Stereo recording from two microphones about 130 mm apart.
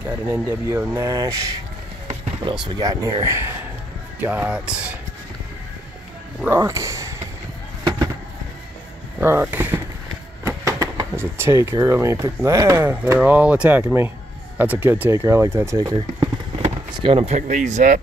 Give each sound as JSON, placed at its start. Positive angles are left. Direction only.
{"t": 0.0, "sound": "speech", "side_deg": -25}
{"t": 2.4, "sound": "speech", "side_deg": -35}
{"t": 6.5, "sound": "a sound", "side_deg": -25}
{"t": 9.2, "sound": "speech", "side_deg": -15}
{"t": 10.4, "sound": "vehicle", "side_deg": -30}
{"t": 11.8, "sound": "speech", "side_deg": -20}
{"t": 12.8, "sound": "speech", "side_deg": -10}
{"t": 15.8, "sound": "a sound", "side_deg": -35}
{"t": 16.9, "sound": "speech", "side_deg": -45}
{"t": 17.4, "sound": "speech", "side_deg": -70}